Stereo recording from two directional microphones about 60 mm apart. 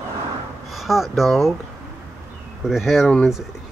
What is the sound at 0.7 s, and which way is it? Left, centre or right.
Speech, centre.